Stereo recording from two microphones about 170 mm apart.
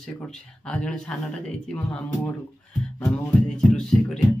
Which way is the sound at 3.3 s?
5° left (ahead or behind).